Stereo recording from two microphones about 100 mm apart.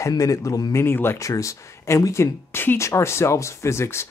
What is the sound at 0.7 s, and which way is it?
Speech, 25° left (ahead or behind).